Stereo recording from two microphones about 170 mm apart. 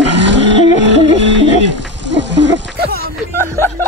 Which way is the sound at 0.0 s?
90° right.